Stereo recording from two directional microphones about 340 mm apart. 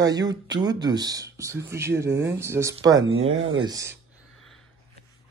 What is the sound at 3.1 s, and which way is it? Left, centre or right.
Speech, right.